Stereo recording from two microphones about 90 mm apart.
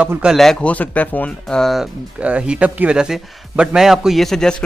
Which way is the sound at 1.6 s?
Centre (ahead or behind).